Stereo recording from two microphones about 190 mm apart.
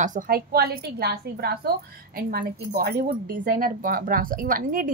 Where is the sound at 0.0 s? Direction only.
45° right (ahead or behind).